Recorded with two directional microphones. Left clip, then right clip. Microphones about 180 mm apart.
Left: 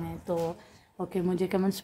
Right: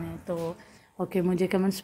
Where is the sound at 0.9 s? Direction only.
10° right (ahead or behind).